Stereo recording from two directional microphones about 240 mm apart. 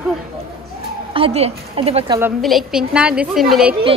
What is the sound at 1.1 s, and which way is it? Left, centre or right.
A woman's voice, right.